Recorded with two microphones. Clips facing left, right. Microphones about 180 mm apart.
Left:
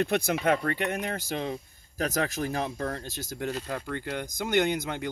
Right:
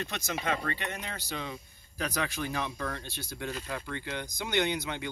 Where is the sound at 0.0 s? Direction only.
55° left (ahead or behind).